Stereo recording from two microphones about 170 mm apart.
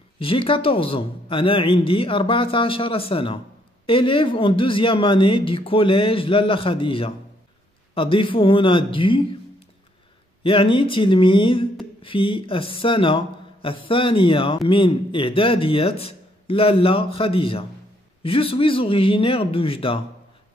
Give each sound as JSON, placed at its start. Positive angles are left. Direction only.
{"t": 0.2, "sound": "speech", "side_deg": 30}
{"t": 10.4, "sound": "speech", "side_deg": 30}